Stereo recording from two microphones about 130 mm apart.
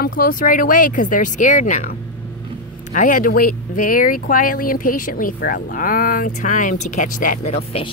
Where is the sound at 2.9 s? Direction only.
85° left.